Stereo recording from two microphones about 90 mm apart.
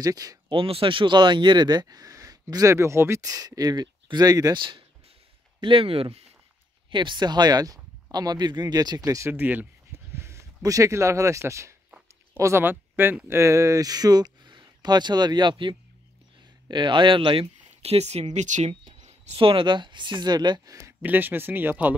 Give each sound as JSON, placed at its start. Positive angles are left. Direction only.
{"t": 0.0, "sound": "speech", "side_deg": -45}
{"t": 0.5, "sound": "speech", "side_deg": -85}
{"t": 5.6, "sound": "speech", "side_deg": -80}
{"t": 6.9, "sound": "speech", "side_deg": -60}
{"t": 9.3, "sound": "speech", "side_deg": -20}
{"t": 9.9, "sound": "speech", "side_deg": -30}
{"t": 12.6, "sound": "speech", "side_deg": -25}
{"t": 21.0, "sound": "speech", "side_deg": -20}